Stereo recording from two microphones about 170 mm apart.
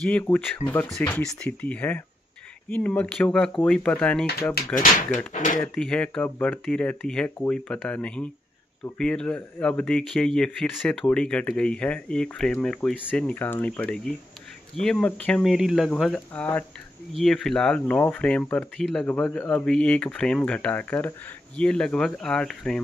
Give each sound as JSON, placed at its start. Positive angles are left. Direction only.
{"t": 0.0, "sound": "speech", "side_deg": 10}
{"t": 4.7, "sound": "speech", "side_deg": 50}
{"t": 5.8, "sound": "speech", "side_deg": 5}